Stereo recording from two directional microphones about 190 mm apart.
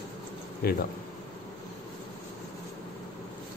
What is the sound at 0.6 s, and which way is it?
Speech, 55° left (ahead or behind).